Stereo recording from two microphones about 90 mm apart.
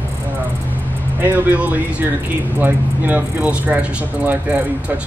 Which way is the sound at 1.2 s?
20° right (ahead or behind).